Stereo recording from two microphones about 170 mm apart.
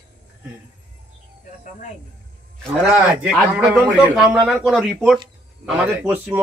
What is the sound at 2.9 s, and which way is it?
A man's voice, 5° right (ahead or behind).